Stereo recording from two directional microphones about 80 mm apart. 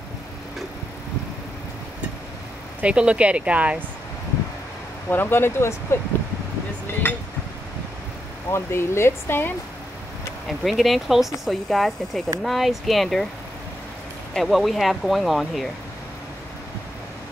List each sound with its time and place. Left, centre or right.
2.8 s speech: centre
5.1 s speech: left
6.9 s a sound: left
8.5 s speech: left
10.6 s speech: centre
14.3 s speech: centre